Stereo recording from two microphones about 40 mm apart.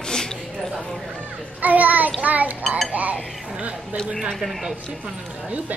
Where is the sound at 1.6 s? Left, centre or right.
Right.